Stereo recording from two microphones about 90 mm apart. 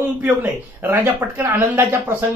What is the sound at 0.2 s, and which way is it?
Speech, 20° right (ahead or behind).